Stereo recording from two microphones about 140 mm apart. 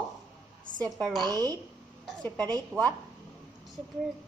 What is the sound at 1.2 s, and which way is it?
Speech, 25° right (ahead or behind).